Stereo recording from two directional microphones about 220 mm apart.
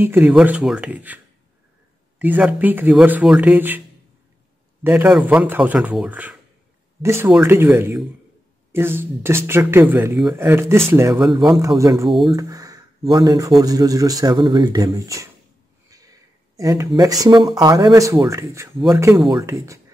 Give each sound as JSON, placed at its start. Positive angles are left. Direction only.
{"t": 0.0, "sound": "speech", "side_deg": -10}
{"t": 4.8, "sound": "speech", "side_deg": -5}
{"t": 12.1, "sound": "speech", "side_deg": 0}
{"t": 12.4, "sound": "a sound", "side_deg": -15}
{"t": 13.1, "sound": "speech", "side_deg": -20}
{"t": 16.5, "sound": "speech", "side_deg": -15}